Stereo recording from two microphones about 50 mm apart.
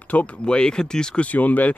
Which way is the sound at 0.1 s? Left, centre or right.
Left.